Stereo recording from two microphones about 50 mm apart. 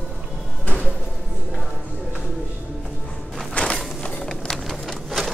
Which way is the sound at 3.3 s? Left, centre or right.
Centre.